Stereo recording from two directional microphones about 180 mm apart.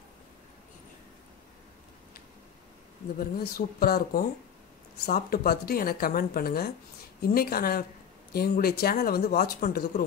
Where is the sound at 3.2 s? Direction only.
55° left (ahead or behind).